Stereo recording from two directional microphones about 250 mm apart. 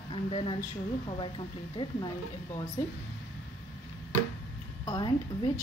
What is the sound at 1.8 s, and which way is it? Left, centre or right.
Speech, centre.